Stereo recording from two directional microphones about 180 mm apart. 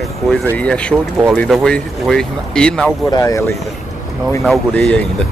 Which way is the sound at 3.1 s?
20° left (ahead or behind).